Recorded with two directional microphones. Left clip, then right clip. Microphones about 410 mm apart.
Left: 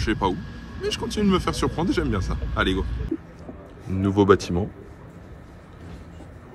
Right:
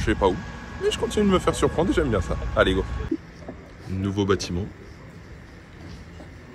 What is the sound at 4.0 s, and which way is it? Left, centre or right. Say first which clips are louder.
Speech: left 6 dB; centre.